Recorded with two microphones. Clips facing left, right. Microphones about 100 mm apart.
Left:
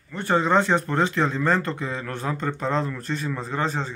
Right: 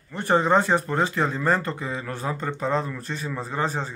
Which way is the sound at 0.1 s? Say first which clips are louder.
Right 1 dB; 20° right (ahead or behind).